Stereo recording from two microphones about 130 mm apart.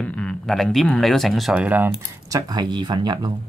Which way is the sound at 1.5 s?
10° right (ahead or behind).